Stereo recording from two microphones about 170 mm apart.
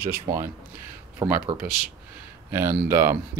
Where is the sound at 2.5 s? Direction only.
15° right (ahead or behind).